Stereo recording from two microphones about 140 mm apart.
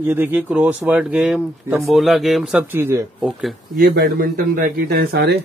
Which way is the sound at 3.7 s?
90° right.